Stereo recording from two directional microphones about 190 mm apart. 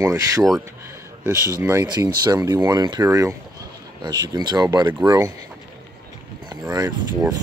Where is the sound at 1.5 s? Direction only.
15° right (ahead or behind).